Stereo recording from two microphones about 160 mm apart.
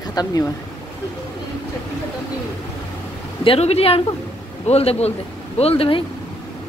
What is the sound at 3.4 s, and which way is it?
A woman's voice, 40° left (ahead or behind).